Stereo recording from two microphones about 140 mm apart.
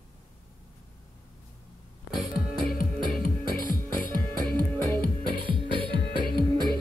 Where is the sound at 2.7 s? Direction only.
75° left (ahead or behind).